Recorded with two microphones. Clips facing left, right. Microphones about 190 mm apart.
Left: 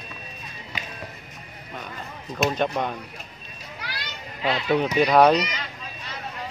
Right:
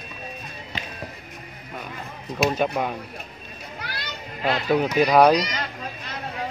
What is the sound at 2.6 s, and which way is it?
Speech, 5° right (ahead or behind).